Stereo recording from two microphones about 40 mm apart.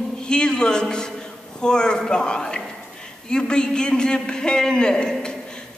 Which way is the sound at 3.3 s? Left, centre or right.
Left.